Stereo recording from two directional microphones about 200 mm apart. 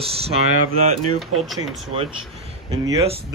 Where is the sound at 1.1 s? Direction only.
Centre (ahead or behind).